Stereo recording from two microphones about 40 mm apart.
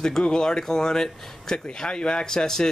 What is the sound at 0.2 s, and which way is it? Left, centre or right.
Speech, centre.